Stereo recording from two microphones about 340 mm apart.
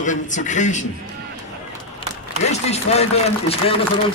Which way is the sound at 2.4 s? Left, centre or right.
Centre.